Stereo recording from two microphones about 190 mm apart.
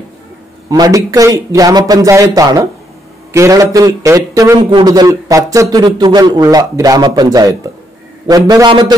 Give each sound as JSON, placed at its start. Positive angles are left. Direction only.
{"t": 0.7, "sound": "a man's voice", "side_deg": -20}